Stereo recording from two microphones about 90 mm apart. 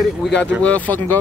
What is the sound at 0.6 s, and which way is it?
Speech, 15° left (ahead or behind).